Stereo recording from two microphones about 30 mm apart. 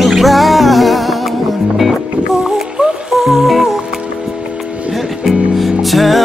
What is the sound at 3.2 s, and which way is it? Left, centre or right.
Music, centre.